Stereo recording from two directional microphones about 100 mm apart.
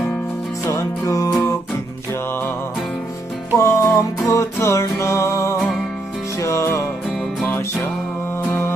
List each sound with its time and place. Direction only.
0.7 s music: 30° left (ahead or behind)
3.5 s music: 30° left (ahead or behind)
7.4 s music: 20° left (ahead or behind)